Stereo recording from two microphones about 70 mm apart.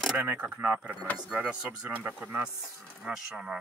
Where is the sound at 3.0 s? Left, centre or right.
Centre.